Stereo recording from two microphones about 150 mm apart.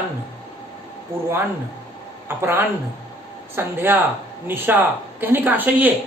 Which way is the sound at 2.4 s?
15° right (ahead or behind).